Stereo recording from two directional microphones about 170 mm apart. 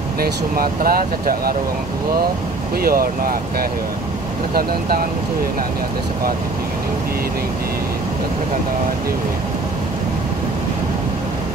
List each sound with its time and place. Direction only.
0.2 s speech: 60° right (ahead or behind)
2.8 s speech: 60° right (ahead or behind)